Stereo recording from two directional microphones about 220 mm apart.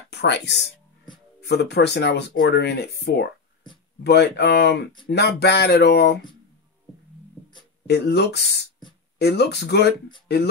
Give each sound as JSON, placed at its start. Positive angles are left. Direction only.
{"t": 0.1, "sound": "speech", "side_deg": 50}
{"t": 7.8, "sound": "speech", "side_deg": 50}